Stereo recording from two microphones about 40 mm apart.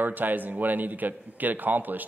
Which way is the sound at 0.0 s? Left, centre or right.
Right.